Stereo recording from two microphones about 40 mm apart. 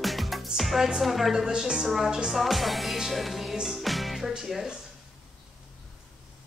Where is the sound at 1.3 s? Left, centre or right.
Centre.